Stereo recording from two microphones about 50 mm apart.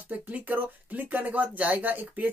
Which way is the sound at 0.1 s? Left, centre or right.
Right.